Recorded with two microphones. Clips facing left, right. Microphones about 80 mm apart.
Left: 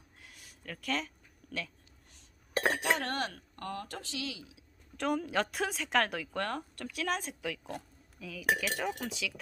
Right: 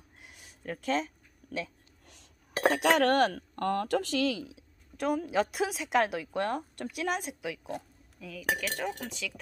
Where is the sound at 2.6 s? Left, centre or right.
Right.